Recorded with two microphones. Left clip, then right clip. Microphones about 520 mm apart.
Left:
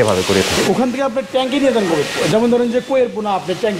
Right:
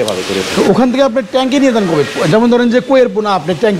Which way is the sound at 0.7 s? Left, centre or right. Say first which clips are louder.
Right 6 dB; right.